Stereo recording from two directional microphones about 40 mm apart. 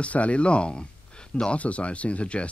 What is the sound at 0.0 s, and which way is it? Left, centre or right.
Speech, left.